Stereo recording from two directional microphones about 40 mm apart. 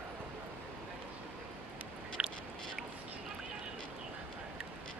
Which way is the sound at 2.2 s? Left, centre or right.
Centre.